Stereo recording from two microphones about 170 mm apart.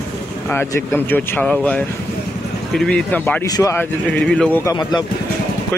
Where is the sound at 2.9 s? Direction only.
10° left (ahead or behind).